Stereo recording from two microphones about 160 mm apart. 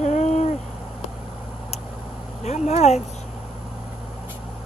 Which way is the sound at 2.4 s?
45° left (ahead or behind).